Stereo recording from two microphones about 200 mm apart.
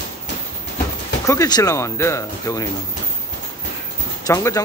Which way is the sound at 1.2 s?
15° left (ahead or behind).